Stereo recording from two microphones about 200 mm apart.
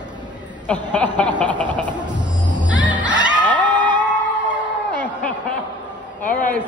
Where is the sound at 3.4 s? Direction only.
20° right (ahead or behind).